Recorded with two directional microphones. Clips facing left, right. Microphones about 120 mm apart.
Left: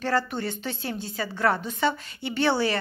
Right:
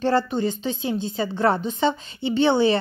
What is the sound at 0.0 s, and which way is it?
A woman's voice, 25° right (ahead or behind).